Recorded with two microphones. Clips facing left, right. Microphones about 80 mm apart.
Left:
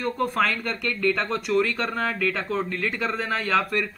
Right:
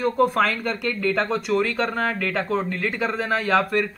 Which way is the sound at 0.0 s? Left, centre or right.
Centre.